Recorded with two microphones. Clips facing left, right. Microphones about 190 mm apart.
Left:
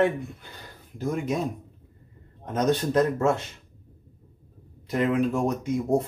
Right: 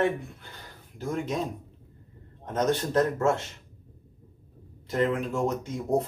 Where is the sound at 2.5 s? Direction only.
15° left (ahead or behind).